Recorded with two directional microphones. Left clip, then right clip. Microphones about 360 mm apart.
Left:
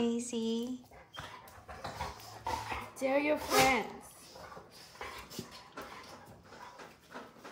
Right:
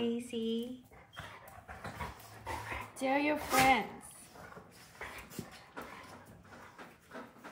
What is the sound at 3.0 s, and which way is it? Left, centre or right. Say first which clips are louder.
Music: left 1 dB; right.